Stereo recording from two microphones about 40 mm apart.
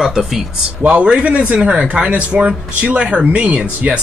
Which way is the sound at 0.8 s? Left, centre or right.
Right.